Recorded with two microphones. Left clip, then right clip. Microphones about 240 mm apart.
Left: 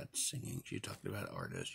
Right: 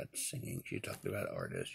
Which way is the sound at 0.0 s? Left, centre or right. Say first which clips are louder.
Left 1 dB; left.